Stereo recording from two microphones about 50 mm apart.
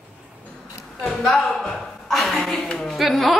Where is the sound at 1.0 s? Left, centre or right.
Centre.